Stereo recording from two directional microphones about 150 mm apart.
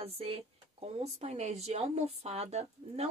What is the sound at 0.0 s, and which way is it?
Speech, 40° right (ahead or behind).